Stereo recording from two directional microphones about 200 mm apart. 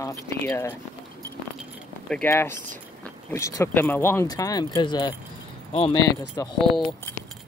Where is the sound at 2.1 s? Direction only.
10° left (ahead or behind); by 6.0 s 30° left (ahead or behind).